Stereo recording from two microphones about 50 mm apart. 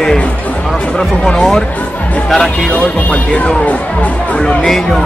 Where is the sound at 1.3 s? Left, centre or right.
Centre.